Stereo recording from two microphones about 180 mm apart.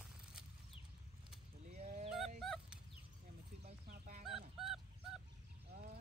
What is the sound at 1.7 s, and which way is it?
Goose, 40° right (ahead or behind).